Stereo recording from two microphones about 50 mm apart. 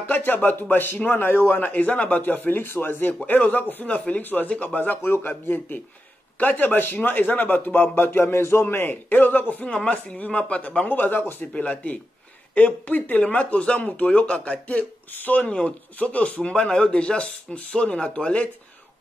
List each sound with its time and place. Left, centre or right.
0.1 s a man's voice: left
9.7 s speech: left
10.9 s a man's voice: left
11.5 s speech: left
15.0 s a man's voice: left